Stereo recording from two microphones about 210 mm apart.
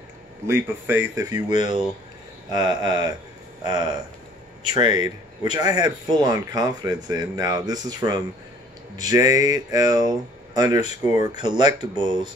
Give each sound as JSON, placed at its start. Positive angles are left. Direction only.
{"t": 0.5, "sound": "speech", "side_deg": -10}